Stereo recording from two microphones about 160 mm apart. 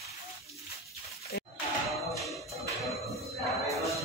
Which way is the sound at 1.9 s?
Centre (ahead or behind).